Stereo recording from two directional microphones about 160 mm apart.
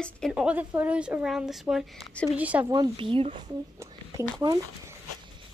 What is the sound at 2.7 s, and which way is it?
Speech, 30° right (ahead or behind).